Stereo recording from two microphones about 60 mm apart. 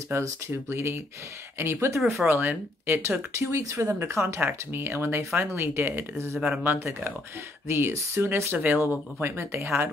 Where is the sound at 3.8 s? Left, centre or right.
Right.